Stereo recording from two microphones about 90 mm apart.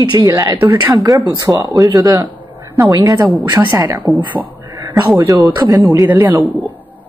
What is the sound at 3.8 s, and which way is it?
Speech, 45° right (ahead or behind).